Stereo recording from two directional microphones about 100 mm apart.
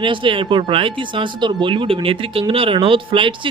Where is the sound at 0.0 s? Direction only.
55° right (ahead or behind).